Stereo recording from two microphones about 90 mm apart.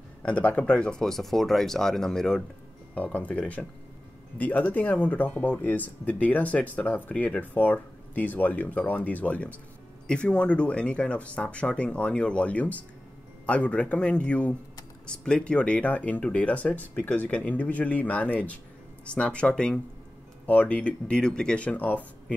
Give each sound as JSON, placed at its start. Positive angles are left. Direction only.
{"t": 0.2, "sound": "speech", "side_deg": 15}